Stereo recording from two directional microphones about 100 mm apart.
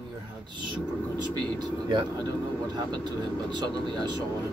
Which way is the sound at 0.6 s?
50° right (ahead or behind).